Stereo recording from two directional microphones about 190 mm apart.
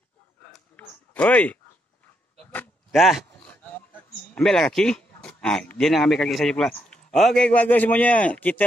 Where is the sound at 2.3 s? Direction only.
5° left (ahead or behind).